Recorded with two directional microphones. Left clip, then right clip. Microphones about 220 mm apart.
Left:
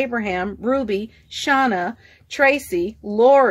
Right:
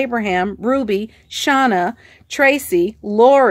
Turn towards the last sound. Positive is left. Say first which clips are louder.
# right 2 dB
turn(degrees=-35)  # may be behind; listen again after turning